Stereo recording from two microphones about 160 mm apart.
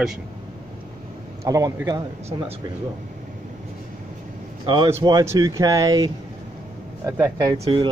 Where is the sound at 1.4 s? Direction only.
20° right (ahead or behind).